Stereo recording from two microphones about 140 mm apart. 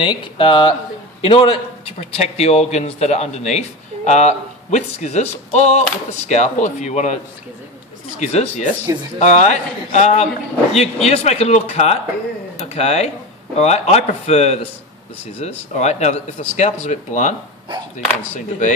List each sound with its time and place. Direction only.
0.0 s a man's voice: 35° left (ahead or behind); by 7.2 s 60° left (ahead or behind)
8.2 s a man's voice: 50° left (ahead or behind)
8.9 s speech: 25° right (ahead or behind)
9.2 s a man's voice: 55° left (ahead or behind)